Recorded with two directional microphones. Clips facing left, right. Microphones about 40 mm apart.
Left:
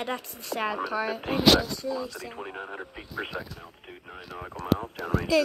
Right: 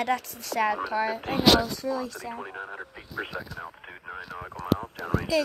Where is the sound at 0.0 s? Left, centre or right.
Right.